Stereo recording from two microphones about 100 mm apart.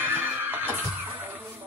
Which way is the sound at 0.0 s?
20° right (ahead or behind).